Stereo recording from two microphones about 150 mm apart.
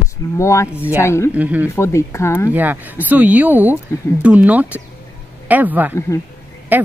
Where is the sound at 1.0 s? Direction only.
20° left (ahead or behind).